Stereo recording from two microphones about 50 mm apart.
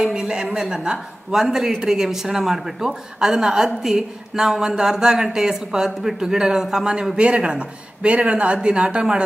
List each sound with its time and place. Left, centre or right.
0.0 s a woman's voice: centre